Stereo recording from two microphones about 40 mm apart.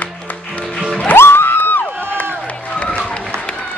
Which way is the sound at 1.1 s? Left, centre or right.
Left.